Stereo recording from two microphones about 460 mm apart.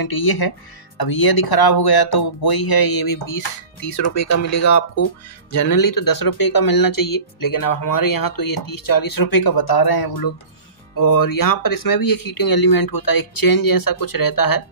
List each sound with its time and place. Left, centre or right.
0.0 s speech: left